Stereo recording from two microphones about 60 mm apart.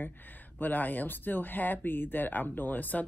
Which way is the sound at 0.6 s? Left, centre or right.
Left.